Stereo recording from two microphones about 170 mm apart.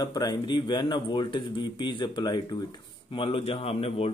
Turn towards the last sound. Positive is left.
turn(degrees=35)  # may be behind; listen again after turning